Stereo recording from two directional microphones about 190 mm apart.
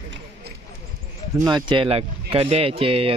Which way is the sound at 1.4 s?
25° right (ahead or behind).